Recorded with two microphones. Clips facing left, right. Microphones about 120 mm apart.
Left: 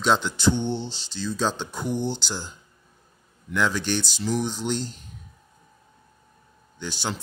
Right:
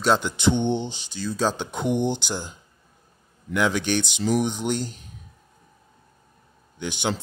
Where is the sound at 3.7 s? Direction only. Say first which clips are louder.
Right 2 dB; 60° right (ahead or behind).